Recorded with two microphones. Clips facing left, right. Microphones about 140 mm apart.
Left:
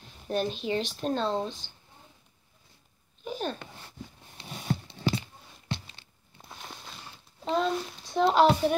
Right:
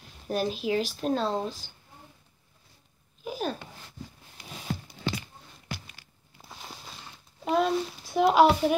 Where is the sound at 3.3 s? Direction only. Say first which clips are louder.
Right 1 dB; 5° right (ahead or behind).